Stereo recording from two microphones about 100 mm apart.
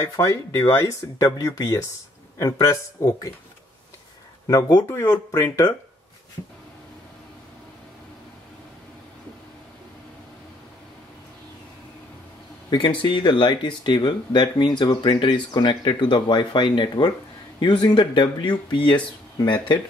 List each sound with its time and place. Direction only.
0.0 s speech: 30° left (ahead or behind)
4.5 s speech: 40° left (ahead or behind)
4.8 s speech: 25° left (ahead or behind)
12.6 s speech: 50° left (ahead or behind)